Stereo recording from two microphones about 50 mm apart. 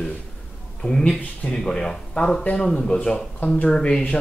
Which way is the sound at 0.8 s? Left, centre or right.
Centre.